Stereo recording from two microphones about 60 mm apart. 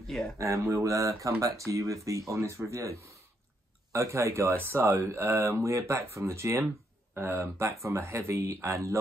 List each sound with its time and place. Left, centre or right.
0.4 s speech: right